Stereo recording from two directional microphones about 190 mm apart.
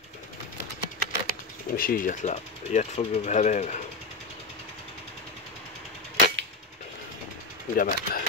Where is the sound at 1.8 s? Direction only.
50° left (ahead or behind).